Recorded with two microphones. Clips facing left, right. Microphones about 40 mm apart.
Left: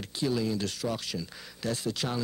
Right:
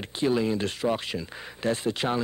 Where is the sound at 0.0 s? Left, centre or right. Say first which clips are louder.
Right 5 dB; right.